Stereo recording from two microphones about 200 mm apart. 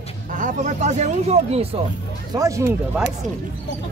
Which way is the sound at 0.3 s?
40° right (ahead or behind).